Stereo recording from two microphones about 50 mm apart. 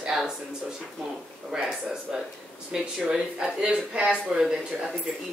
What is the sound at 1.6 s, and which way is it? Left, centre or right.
Speech, centre.